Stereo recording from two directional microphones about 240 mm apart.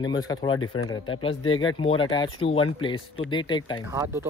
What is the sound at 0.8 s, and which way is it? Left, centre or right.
Speech, left.